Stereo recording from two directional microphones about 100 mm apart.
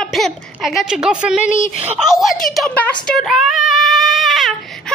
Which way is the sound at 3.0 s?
Centre (ahead or behind).